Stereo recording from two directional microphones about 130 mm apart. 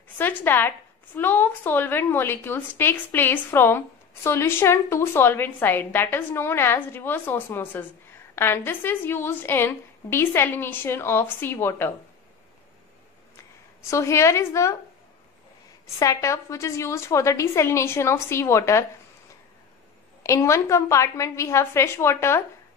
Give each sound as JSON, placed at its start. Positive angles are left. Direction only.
{"t": 0.2, "sound": "a woman's voice", "side_deg": 15}
{"t": 13.8, "sound": "a woman's voice", "side_deg": 25}
{"t": 16.0, "sound": "a woman's voice", "side_deg": 25}
{"t": 20.2, "sound": "a woman's voice", "side_deg": 20}